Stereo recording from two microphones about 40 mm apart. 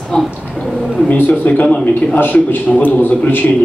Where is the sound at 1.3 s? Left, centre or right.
Left.